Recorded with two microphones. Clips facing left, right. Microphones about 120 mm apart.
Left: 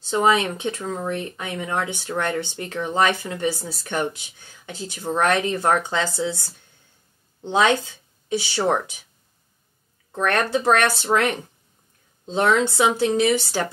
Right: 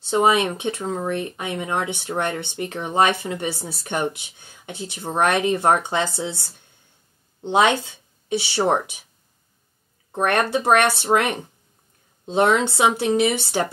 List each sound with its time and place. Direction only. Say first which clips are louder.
0.1 s speech: right 1 dB; 20° right (ahead or behind)
7.4 s speech: right 1 dB; 20° right (ahead or behind)
10.6 s speech: right 2 dB; 20° right (ahead or behind)
10.9 s speech: right 2 dB; 55° right (ahead or behind)
12.3 s speech: right 1 dB; 25° right (ahead or behind)